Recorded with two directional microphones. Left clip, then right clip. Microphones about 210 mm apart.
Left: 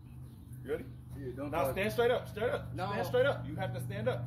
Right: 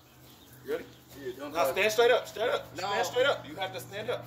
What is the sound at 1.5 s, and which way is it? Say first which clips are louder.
Speech: right 6 dB; 20° right (ahead or behind).